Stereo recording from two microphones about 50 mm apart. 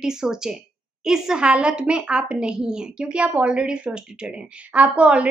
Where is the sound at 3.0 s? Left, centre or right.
Right.